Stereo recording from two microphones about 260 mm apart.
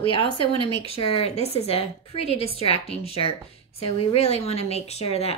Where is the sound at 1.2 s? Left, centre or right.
Left.